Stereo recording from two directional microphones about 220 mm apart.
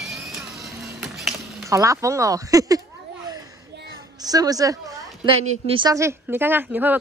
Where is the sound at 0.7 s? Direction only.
15° right (ahead or behind).